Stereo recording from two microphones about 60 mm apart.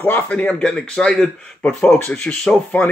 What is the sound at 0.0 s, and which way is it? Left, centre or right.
Speech, left.